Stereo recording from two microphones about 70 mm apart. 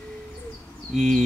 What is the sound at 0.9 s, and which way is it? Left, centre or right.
Speech, centre.